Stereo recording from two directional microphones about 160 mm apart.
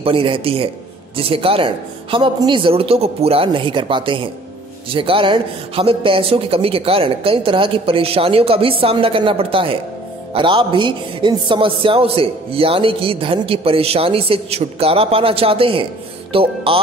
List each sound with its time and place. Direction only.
0.0 s a man's voice: 35° right (ahead or behind)